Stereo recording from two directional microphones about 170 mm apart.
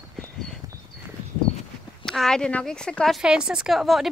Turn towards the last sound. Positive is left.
turn(degrees=0)  # may be behind; listen again after turning